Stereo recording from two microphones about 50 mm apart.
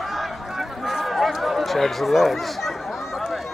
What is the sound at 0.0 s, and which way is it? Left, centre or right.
Run, centre.